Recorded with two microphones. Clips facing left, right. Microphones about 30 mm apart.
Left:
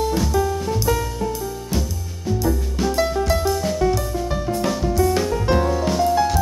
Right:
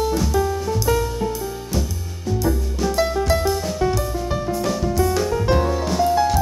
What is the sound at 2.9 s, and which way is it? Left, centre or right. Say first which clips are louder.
Music: right 1 dB; centre.